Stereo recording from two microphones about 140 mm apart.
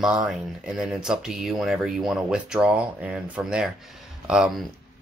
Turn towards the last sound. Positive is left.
turn(degrees=-5)  # may be behind; listen again after turning